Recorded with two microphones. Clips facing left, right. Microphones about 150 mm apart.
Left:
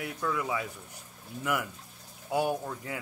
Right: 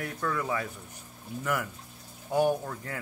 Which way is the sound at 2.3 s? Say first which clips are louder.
Right 3 dB; 10° left (ahead or behind).